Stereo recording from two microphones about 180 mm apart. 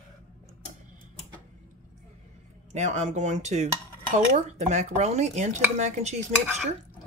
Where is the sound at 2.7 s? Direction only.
40° right (ahead or behind).